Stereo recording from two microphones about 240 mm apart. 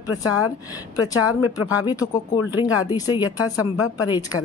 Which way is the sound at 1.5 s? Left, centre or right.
Centre.